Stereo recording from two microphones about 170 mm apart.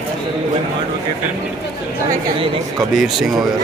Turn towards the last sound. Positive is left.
turn(degrees=0)  # may be behind; listen again after turning